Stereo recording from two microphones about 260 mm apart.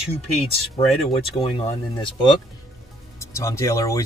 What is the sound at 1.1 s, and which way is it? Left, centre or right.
Speech, left.